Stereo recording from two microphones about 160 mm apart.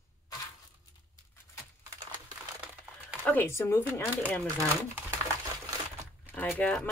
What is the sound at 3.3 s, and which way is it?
Speech, 15° left (ahead or behind).